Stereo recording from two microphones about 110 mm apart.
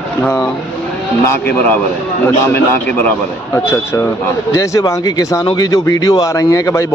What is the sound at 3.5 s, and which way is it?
A man's voice, 20° left (ahead or behind).